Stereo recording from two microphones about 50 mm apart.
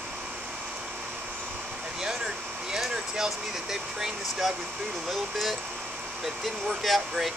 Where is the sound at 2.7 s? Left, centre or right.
Centre.